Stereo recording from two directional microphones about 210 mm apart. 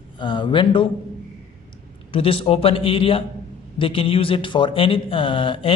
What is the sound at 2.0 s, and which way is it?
A man's voice, 25° left (ahead or behind).